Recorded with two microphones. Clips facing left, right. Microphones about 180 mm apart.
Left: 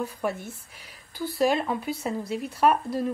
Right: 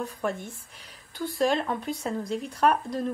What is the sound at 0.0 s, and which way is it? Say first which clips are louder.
Speech: left 1 dB; 5° left (ahead or behind).